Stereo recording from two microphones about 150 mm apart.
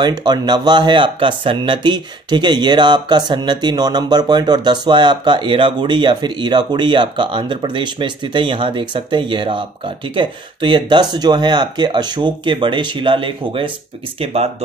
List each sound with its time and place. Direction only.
0.0 s speech: 30° right (ahead or behind)